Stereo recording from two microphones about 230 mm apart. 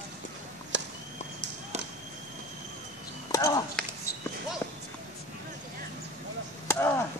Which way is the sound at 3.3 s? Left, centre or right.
Centre.